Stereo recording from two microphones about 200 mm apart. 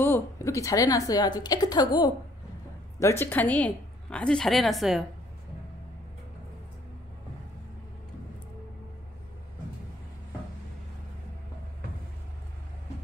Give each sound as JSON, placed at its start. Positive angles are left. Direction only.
{"t": 0.0, "sound": "a woman's voice", "side_deg": 10}